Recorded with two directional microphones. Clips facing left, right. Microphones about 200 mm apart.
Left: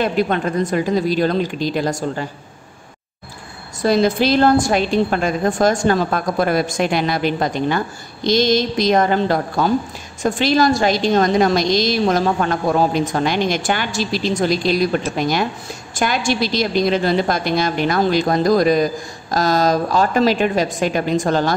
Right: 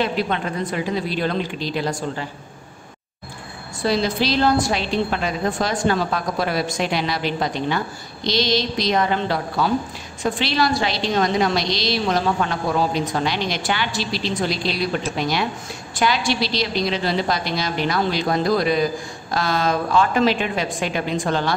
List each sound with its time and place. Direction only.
0.0 s a woman's voice: 45° left (ahead or behind)
3.8 s a woman's voice: 50° left (ahead or behind)